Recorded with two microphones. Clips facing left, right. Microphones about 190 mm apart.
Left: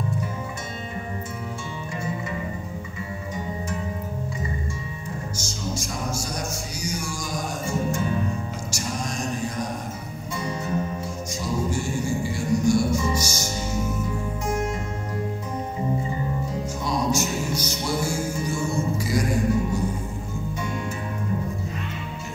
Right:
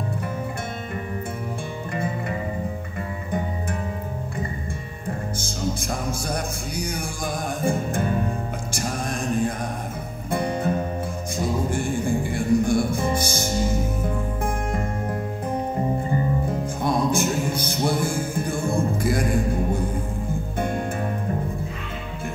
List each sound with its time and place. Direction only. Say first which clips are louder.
6.9 s music: right 2 dB; 55° right (ahead or behind)
9.3 s mantra: right 4 dB; 55° right (ahead or behind)
10.3 s music: right 5 dB; 55° right (ahead or behind)
16.8 s music: right 3 dB; 55° right (ahead or behind)